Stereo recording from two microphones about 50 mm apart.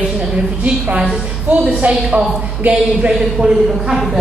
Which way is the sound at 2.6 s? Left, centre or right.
Right.